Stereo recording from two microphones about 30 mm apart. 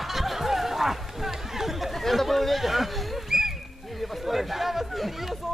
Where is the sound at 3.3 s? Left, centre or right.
Centre.